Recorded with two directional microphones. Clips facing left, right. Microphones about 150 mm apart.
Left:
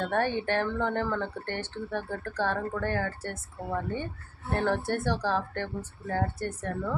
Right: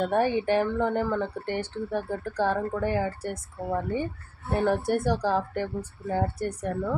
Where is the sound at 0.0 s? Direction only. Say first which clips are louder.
Right 4 dB; 10° right (ahead or behind).